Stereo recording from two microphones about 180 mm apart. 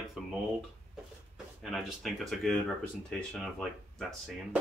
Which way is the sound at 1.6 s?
Centre (ahead or behind).